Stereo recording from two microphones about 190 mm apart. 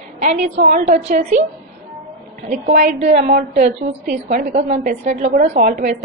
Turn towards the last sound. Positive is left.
turn(degrees=-45)  # may be behind; listen again after turning